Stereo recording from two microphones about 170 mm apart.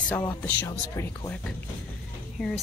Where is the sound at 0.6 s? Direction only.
20° left (ahead or behind).